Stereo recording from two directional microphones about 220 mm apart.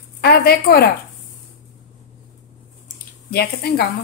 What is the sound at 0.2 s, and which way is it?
Speech, 45° left (ahead or behind).